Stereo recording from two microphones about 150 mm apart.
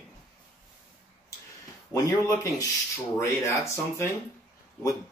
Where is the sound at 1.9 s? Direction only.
20° left (ahead or behind).